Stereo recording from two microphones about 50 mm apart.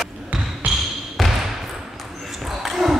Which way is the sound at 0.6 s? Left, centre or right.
Right.